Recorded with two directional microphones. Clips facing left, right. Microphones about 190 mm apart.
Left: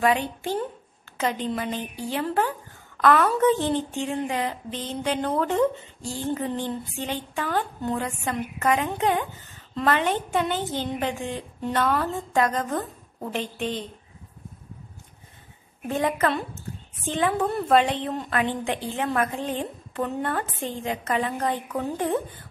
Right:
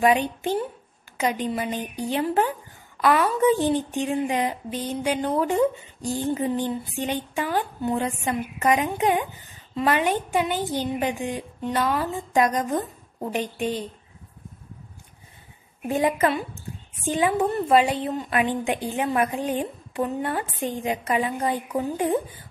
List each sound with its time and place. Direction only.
0.0 s a woman's voice: 20° right (ahead or behind)
3.0 s a woman's voice: 10° right (ahead or behind)
15.9 s a woman's voice: 10° right (ahead or behind)